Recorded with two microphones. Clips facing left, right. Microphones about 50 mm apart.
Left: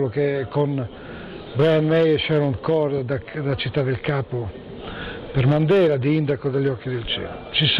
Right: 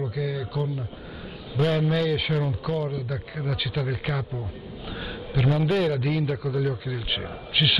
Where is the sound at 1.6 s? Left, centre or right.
Left.